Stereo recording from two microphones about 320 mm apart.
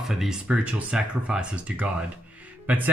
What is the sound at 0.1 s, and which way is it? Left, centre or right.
Speech, centre.